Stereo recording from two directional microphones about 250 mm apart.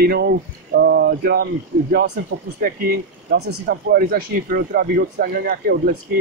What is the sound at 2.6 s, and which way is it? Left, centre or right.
Speech, right.